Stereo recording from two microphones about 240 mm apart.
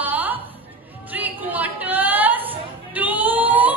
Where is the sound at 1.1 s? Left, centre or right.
Centre.